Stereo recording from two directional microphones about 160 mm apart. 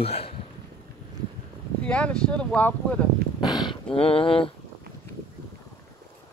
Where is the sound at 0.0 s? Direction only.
35° left (ahead or behind).